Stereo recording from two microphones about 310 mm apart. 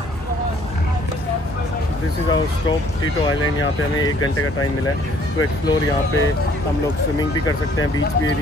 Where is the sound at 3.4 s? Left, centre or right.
Left.